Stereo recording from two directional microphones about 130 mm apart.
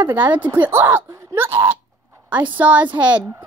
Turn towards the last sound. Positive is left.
turn(degrees=-10)  # may be behind; listen again after turning